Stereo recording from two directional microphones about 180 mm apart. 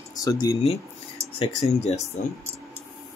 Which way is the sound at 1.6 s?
35° left (ahead or behind).